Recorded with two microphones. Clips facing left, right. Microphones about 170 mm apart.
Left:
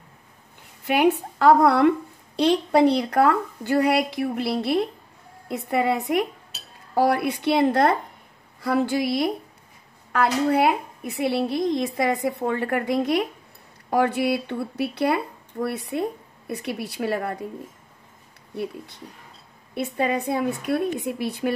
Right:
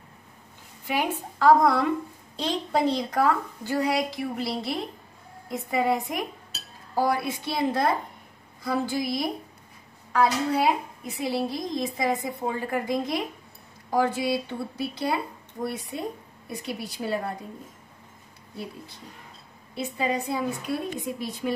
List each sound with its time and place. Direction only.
0.8 s a woman's voice: 65° left (ahead or behind)
19.7 s a woman's voice: 60° left (ahead or behind)